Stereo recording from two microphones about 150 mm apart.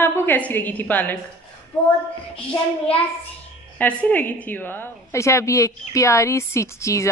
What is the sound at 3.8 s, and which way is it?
A woman's voice, 10° left (ahead or behind).